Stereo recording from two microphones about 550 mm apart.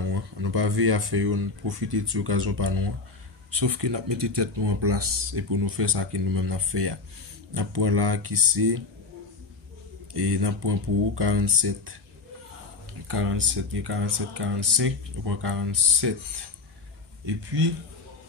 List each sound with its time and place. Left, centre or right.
0.1 s speech: right
10.3 s speech: right
13.1 s speech: right